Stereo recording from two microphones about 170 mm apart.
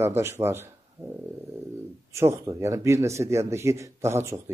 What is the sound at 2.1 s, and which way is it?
Speech, 15° right (ahead or behind).